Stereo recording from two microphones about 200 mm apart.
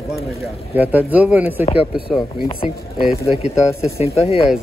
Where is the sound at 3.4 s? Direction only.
30° left (ahead or behind).